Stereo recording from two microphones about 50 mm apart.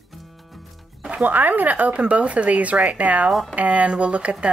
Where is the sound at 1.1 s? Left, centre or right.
Right.